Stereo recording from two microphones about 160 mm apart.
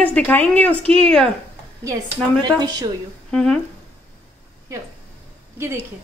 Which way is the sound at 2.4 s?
25° right (ahead or behind).